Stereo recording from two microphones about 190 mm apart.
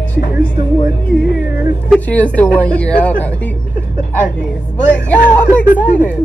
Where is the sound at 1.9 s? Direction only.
5° left (ahead or behind).